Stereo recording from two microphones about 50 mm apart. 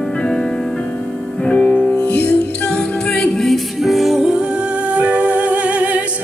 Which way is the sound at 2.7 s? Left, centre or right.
Centre.